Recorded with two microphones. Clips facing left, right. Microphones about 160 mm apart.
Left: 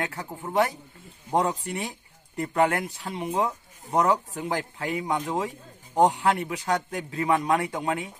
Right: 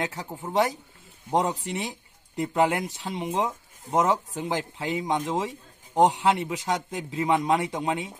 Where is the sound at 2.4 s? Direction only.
20° right (ahead or behind).